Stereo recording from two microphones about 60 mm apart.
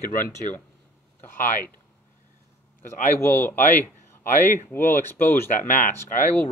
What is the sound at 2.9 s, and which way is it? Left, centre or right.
Speech, left.